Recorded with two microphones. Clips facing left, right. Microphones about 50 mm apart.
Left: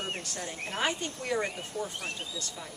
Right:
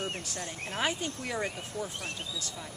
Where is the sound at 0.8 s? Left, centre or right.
Centre.